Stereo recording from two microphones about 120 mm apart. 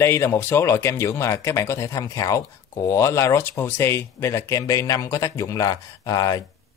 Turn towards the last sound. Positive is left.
turn(degrees=30)  # may be behind; listen again after turning